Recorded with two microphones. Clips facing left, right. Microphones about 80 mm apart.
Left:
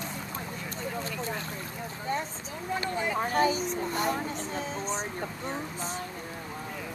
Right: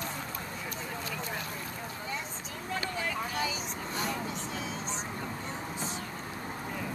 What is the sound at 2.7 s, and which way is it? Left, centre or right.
Vehicle, left.